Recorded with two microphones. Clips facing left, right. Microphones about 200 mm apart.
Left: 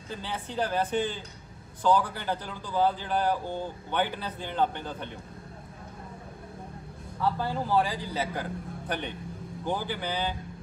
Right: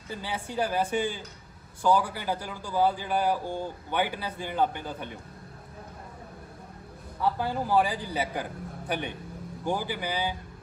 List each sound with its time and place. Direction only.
0.1 s a man's voice: 10° right (ahead or behind)
7.3 s a man's voice: 15° right (ahead or behind)